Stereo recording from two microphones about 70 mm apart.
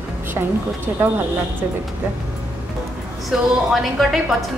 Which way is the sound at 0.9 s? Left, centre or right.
Right.